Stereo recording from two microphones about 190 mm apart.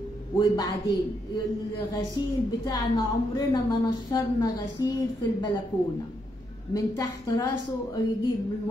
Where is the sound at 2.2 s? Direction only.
20° left (ahead or behind).